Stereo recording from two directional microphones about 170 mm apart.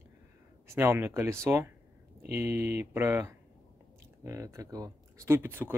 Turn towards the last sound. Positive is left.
turn(degrees=-15)  # may be behind; listen again after turning